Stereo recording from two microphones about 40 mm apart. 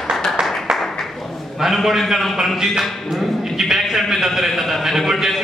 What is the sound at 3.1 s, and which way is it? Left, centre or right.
A man's voice, centre.